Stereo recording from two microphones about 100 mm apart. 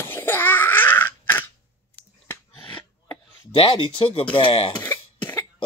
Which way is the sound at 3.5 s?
55° left (ahead or behind).